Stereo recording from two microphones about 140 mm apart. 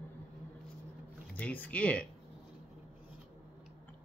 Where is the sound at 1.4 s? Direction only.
10° left (ahead or behind).